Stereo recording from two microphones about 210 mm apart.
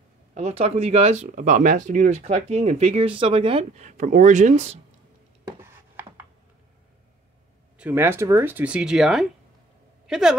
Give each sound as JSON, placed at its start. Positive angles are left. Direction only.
{"t": 0.3, "sound": "speech", "side_deg": -30}
{"t": 5.6, "sound": "a sound", "side_deg": -10}
{"t": 7.7, "sound": "speech", "side_deg": -10}